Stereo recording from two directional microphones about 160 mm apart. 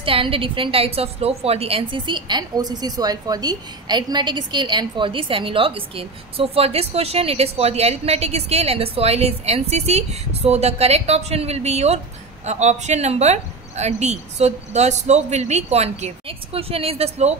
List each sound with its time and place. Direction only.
0.0 s a woman's voice: 35° right (ahead or behind)